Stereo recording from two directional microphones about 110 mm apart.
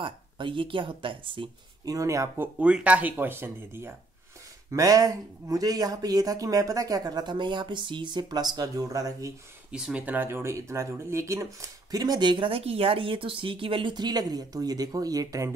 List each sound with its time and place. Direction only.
0.0 s speech: 50° right (ahead or behind)
1.9 s speech: 30° right (ahead or behind)
2.4 s speech: 10° right (ahead or behind); by 9.3 s 30° right (ahead or behind)
9.7 s speech: 10° right (ahead or behind); by 15.5 s 30° right (ahead or behind)